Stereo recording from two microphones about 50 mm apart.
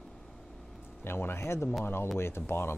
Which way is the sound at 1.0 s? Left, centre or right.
Left.